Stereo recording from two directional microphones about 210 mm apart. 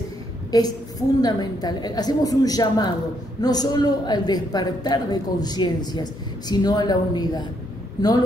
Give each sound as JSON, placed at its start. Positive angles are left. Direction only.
{"t": 0.5, "sound": "a man's voice", "side_deg": 20}